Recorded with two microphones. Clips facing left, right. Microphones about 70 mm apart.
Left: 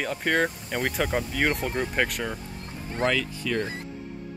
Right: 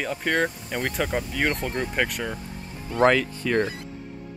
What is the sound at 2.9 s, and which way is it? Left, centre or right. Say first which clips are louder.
Speech: right 6 dB; right.